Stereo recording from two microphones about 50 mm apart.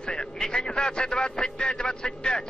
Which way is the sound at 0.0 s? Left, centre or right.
Centre.